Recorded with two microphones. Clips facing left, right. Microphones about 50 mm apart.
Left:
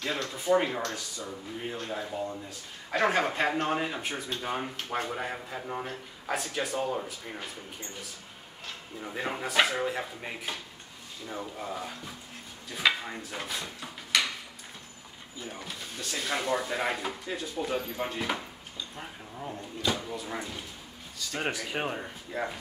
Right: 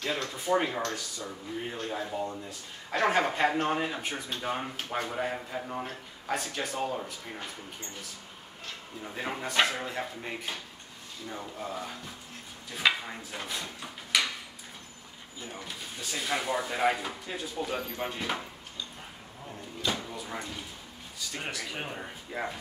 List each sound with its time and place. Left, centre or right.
0.0 s speech: centre
9.0 s speech: centre
15.4 s speech: centre
19.8 s speech: centre
21.4 s speech: left
22.0 s speech: centre